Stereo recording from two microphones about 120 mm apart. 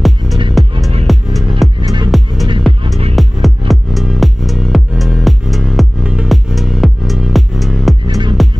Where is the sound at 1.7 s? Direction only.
40° right (ahead or behind).